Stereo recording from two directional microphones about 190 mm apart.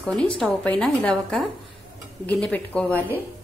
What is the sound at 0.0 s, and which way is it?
A woman's voice, 5° left (ahead or behind).